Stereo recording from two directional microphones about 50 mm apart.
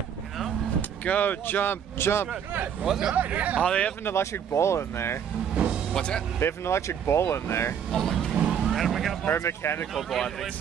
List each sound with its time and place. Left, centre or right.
0.7 s speech: left
2.8 s speech: centre
3.2 s speech: right
3.6 s speech: left
4.0 s speech: left
5.5 s speech: right
5.9 s speech: centre
6.4 s speech: left
7.9 s speech: centre
8.5 s vehicle: centre
9.3 s speech: left
9.9 s speech: centre